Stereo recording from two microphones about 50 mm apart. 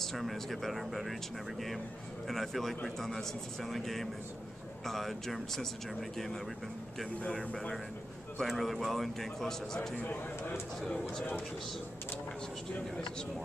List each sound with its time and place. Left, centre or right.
0.0 s a man's voice: centre
2.2 s a man's voice: centre
8.4 s a man's voice: centre
10.0 s speech: left
10.9 s speech: centre